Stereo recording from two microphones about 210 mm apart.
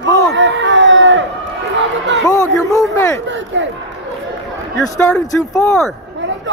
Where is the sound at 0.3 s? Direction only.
60° right (ahead or behind).